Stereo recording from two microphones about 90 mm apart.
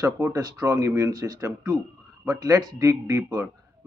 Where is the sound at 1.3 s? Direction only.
30° right (ahead or behind).